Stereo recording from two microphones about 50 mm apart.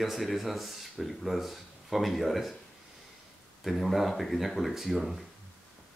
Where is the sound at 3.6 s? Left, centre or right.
Centre.